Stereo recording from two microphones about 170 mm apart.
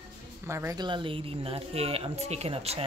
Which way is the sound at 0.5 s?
15° right (ahead or behind).